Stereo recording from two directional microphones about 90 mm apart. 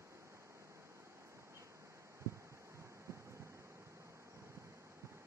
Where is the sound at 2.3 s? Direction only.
35° right (ahead or behind).